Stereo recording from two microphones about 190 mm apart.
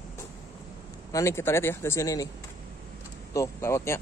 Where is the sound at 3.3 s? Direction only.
15° left (ahead or behind).